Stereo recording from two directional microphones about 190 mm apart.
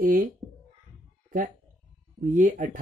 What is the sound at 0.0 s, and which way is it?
Speech, 45° right (ahead or behind).